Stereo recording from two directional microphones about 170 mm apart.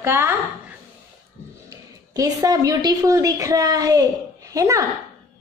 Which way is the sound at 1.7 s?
20° right (ahead or behind).